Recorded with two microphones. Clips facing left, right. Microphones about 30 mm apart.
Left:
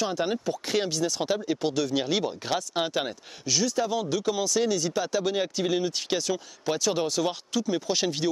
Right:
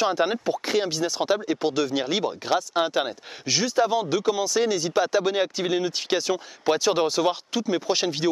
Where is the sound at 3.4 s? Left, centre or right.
Right.